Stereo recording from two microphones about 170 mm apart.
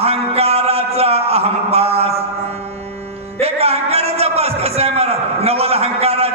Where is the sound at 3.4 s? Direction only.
35° right (ahead or behind).